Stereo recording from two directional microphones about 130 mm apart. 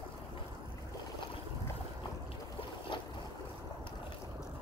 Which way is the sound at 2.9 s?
35° left (ahead or behind).